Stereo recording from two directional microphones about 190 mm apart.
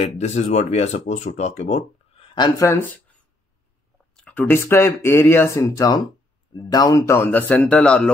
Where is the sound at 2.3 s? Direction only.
20° left (ahead or behind).